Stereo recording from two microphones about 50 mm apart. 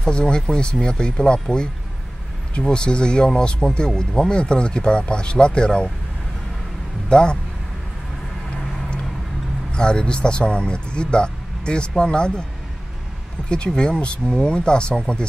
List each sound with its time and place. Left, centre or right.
0.0 s speech: centre
7.1 s speech: centre
9.7 s speech: centre
13.7 s speech: centre